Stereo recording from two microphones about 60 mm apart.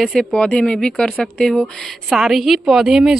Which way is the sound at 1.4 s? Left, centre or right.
Centre.